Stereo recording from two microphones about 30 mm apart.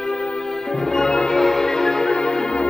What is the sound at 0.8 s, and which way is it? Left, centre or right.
Music, centre.